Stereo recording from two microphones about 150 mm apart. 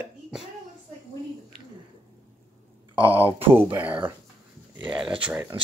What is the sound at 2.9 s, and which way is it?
Speech, 35° right (ahead or behind).